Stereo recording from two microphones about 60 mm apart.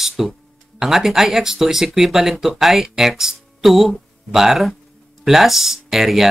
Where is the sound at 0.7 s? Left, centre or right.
Centre.